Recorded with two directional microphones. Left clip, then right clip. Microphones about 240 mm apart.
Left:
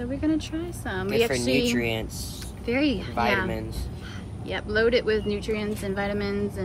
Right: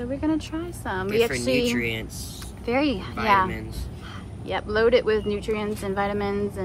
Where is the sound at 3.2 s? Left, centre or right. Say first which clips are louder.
Right 5 dB; centre.